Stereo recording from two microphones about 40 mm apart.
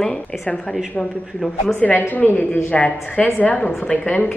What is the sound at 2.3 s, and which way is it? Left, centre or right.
A woman's voice, left.